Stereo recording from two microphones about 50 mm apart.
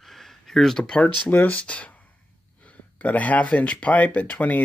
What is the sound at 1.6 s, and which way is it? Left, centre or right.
Speech, left.